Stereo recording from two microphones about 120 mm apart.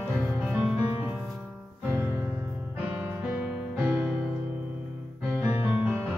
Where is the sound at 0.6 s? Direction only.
15° right (ahead or behind).